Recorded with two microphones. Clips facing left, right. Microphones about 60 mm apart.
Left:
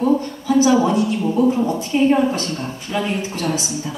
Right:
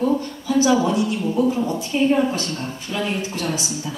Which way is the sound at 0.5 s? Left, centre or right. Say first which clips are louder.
Left 3 dB; centre.